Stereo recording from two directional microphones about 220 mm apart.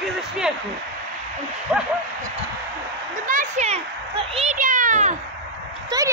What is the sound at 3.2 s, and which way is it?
A child's voice, 35° right (ahead or behind).